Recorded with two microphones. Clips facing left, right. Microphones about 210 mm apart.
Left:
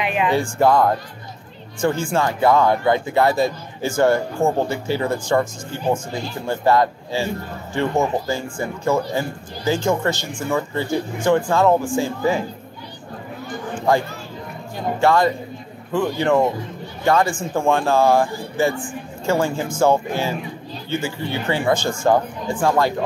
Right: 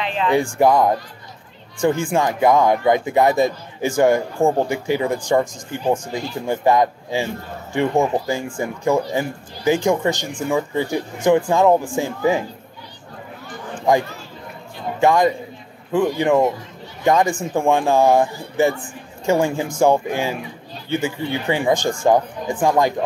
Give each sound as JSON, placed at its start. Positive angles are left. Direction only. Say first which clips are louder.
{"t": 0.0, "sound": "speech", "louder": "left 2 dB", "side_deg": 15}
{"t": 0.3, "sound": "speech", "louder": "right 2 dB", "side_deg": -15}
{"t": 13.9, "sound": "speech", "louder": "right 2 dB", "side_deg": -15}